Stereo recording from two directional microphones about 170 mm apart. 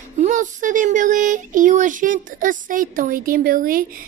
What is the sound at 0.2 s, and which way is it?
Speech, 45° right (ahead or behind).